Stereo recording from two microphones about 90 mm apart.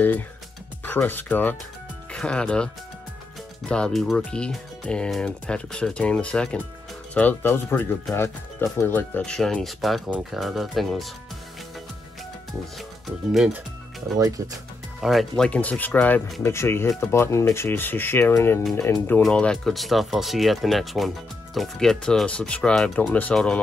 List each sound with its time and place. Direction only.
0.8 s speech: 20° left (ahead or behind)
2.1 s speech: 10° left (ahead or behind)
7.2 s speech: 20° left (ahead or behind); by 11.1 s centre (ahead or behind)
12.7 s speech: centre (ahead or behind)
14.1 s speech: 40° right (ahead or behind)
15.0 s speech: centre (ahead or behind); by 18.3 s 25° left (ahead or behind)
19.2 s speech: 10° left (ahead or behind)
22.9 s speech: 20° left (ahead or behind)